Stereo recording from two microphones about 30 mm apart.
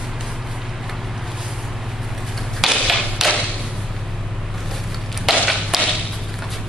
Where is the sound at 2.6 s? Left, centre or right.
Centre.